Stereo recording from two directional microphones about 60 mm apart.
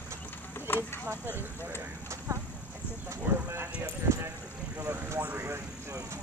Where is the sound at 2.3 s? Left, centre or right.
Right.